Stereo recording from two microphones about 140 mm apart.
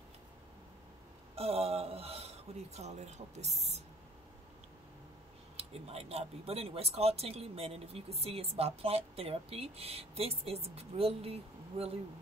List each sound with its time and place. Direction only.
1.3 s speech: 45° right (ahead or behind)
5.6 s speech: 45° right (ahead or behind)